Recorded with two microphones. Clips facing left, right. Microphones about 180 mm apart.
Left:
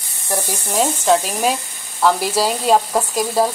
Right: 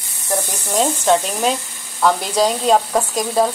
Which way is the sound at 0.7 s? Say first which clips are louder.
Even; centre (ahead or behind).